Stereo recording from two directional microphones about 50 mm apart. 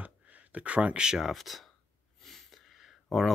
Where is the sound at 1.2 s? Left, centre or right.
Centre.